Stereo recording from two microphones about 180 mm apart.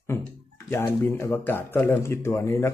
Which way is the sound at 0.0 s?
15° left (ahead or behind).